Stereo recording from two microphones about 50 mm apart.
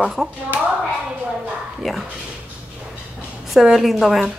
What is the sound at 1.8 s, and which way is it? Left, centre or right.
Speech, centre.